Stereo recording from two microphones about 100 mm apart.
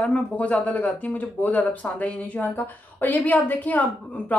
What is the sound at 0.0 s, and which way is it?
Speech, 10° left (ahead or behind).